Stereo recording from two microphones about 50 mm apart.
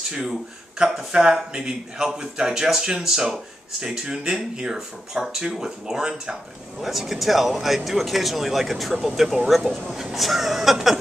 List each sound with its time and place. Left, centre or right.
0.2 s a man's voice: centre